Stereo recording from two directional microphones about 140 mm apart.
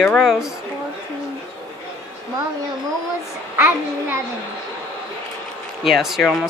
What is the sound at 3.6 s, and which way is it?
Speech, 15° right (ahead or behind).